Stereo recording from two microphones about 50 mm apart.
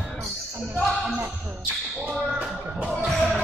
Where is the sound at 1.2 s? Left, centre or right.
Right.